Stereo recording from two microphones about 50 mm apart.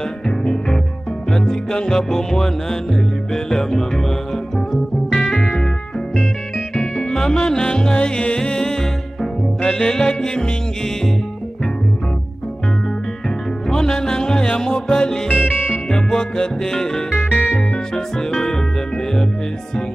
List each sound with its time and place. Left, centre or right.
0.4 s music: centre
5.1 s music: centre
6.7 s music: centre
13.7 s music: centre